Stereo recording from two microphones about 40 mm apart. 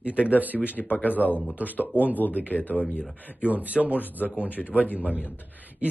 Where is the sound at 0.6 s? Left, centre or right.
Left.